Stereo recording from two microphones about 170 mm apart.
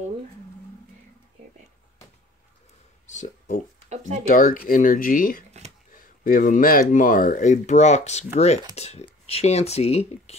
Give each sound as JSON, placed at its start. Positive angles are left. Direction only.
{"t": 3.1, "sound": "speech", "side_deg": 45}
{"t": 3.9, "sound": "speech", "side_deg": -40}
{"t": 4.3, "sound": "speech", "side_deg": 55}